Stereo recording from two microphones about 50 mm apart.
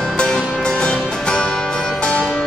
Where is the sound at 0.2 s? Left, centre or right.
Centre.